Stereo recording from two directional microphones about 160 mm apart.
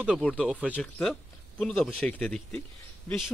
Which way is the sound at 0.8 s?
5° left (ahead or behind).